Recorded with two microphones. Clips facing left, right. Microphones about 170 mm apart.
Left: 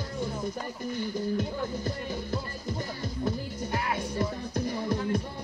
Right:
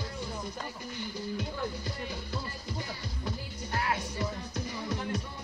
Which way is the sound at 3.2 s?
50° left (ahead or behind).